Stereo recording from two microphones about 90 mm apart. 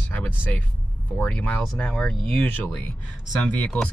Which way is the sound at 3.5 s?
15° left (ahead or behind).